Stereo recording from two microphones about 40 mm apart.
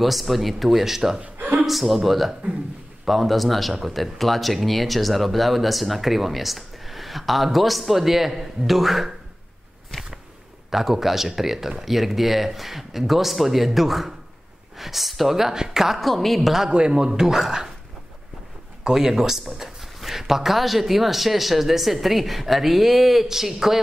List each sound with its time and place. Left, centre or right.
0.0 s speech: centre
1.2 s a sound: right
1.7 s speech: centre
10.7 s speech: centre
16.6 s a man's voice: right
17.3 s speech: centre
18.9 s speech: centre